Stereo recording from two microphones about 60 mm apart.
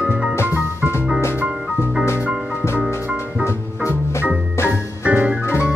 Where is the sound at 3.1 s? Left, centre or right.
Left.